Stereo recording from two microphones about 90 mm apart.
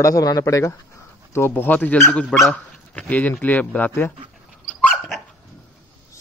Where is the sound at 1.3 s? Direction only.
25° left (ahead or behind).